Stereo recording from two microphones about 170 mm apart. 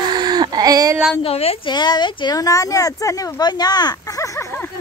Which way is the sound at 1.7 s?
25° left (ahead or behind).